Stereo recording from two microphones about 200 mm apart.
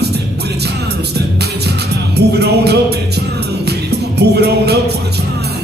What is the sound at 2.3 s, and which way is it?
Music, 55° right (ahead or behind).